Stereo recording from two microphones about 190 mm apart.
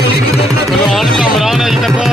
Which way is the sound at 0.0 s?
60° left (ahead or behind).